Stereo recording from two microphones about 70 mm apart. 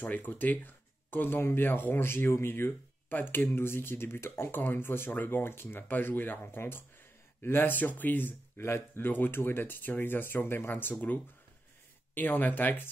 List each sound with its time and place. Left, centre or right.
0.0 s speech: left